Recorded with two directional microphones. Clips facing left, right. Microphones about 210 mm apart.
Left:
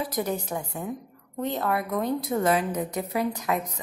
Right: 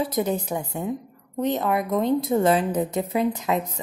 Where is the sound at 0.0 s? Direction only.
20° right (ahead or behind).